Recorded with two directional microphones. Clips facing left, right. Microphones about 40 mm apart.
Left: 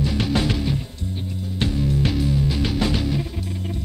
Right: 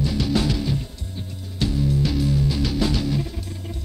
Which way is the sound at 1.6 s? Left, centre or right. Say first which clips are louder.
Even; left.